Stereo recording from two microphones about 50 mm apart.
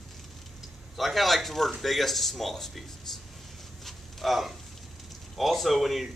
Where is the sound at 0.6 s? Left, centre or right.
Centre.